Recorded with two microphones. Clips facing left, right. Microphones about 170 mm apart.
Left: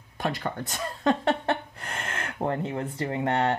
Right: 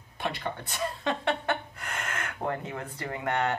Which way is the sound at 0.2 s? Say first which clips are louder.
Left 3 dB; 45° left (ahead or behind).